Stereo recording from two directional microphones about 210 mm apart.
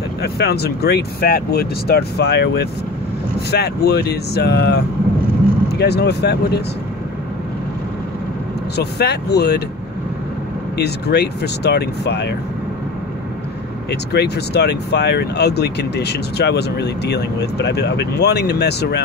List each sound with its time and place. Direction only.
0.2 s speech: 50° left (ahead or behind)
8.7 s speech: 50° left (ahead or behind)
10.8 s speech: 50° left (ahead or behind)
13.8 s speech: 50° left (ahead or behind)